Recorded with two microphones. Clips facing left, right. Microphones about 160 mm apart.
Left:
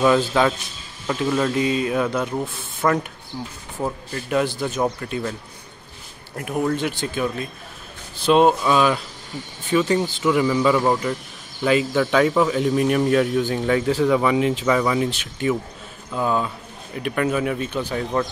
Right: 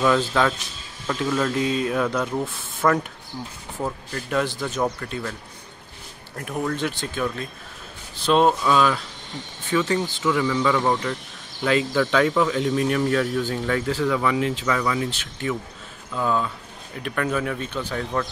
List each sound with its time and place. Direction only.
0.0 s speech: 15° left (ahead or behind)
6.3 s speech: 15° left (ahead or behind)